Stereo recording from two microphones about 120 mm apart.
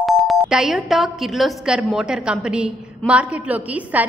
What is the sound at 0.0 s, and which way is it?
A woman's voice, centre (ahead or behind).